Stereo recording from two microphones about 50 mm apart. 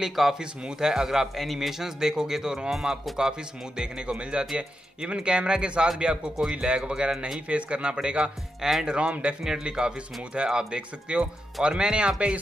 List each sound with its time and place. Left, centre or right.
0.0 s a man's voice: centre
1.3 s a man's voice: centre; by 9.3 s right
9.4 s speech: centre